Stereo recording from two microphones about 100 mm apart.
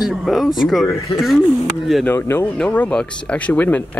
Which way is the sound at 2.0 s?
20° left (ahead or behind).